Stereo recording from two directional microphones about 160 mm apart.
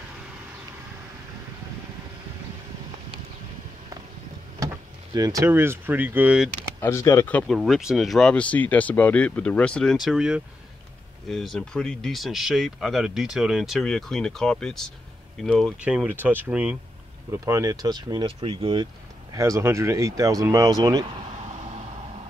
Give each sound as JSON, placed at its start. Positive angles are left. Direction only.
{"t": 5.1, "sound": "speech", "side_deg": -20}
{"t": 6.8, "sound": "speech", "side_deg": 15}
{"t": 17.3, "sound": "speech", "side_deg": -20}
{"t": 19.3, "sound": "speech", "side_deg": -20}